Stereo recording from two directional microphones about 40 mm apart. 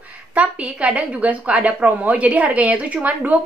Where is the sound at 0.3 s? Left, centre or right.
Right.